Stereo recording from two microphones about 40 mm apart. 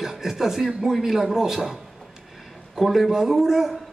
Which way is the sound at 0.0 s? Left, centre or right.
Centre.